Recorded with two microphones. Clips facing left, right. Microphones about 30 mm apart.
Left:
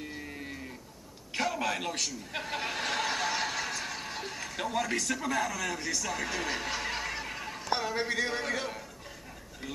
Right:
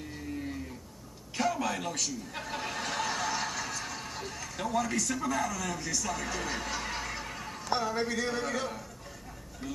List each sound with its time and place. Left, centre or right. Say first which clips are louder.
1.3 s chuckle: even; left
6.0 s chuckle: left 1 dB; left
7.6 s speech: right 1 dB; left